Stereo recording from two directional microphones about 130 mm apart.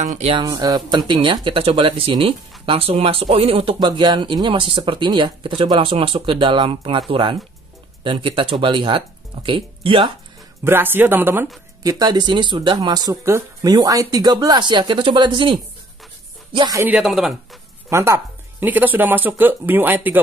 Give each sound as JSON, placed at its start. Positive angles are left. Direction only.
{"t": 0.4, "sound": "speech", "side_deg": -30}
{"t": 10.6, "sound": "speech", "side_deg": -15}
{"t": 11.8, "sound": "speech", "side_deg": -30}
{"t": 16.7, "sound": "speech", "side_deg": -15}
{"t": 17.0, "sound": "speech", "side_deg": 0}
{"t": 17.8, "sound": "speech", "side_deg": -20}